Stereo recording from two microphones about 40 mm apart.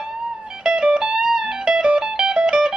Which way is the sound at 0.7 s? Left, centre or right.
Centre.